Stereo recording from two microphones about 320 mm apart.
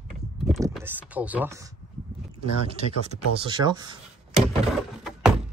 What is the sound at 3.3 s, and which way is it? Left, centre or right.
Speech, centre.